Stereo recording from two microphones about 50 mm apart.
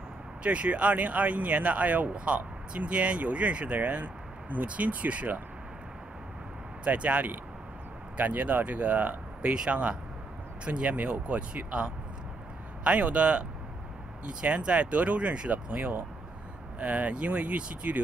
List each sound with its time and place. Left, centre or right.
0.4 s speech: right
6.8 s speech: right